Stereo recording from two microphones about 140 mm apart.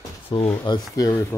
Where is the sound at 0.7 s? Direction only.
25° left (ahead or behind).